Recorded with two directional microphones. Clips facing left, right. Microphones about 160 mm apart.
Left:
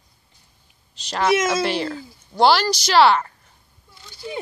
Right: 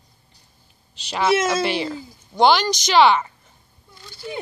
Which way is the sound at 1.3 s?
10° left (ahead or behind).